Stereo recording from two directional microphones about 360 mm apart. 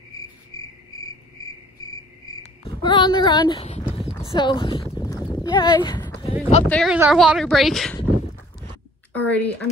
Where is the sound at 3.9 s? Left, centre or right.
Centre.